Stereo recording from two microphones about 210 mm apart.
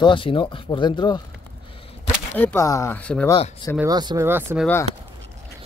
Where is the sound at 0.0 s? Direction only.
25° left (ahead or behind).